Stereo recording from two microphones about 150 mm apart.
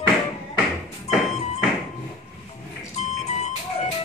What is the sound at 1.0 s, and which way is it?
Music, 50° left (ahead or behind).